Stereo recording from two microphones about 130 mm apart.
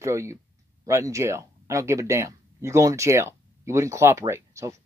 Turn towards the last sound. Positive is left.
turn(degrees=-20)  # may be behind; listen again after turning